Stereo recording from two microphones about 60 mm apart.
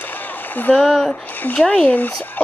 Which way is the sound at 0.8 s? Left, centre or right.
Centre.